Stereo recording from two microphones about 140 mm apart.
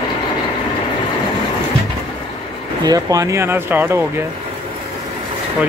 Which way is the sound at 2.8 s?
25° right (ahead or behind).